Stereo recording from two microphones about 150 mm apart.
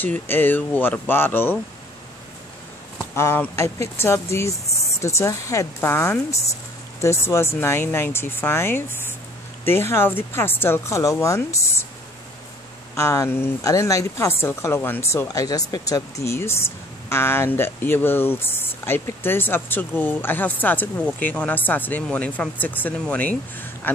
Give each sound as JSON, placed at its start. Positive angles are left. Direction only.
{"t": 0.0, "sound": "a woman's voice", "side_deg": 10}
{"t": 3.2, "sound": "a woman's voice", "side_deg": 15}
{"t": 12.9, "sound": "a woman's voice", "side_deg": 20}